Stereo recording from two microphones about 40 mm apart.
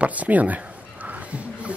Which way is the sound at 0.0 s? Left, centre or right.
Right.